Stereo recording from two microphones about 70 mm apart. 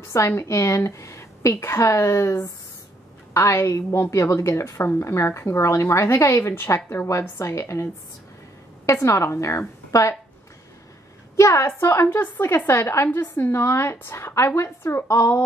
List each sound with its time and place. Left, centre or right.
0.4 s a woman's voice: left
3.3 s a woman's voice: left
9.0 s a woman's voice: left
11.3 s a woman's voice: left